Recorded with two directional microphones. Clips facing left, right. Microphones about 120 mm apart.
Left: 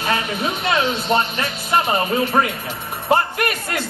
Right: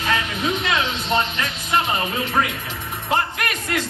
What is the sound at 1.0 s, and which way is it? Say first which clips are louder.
Music: left 2 dB; 45° left (ahead or behind).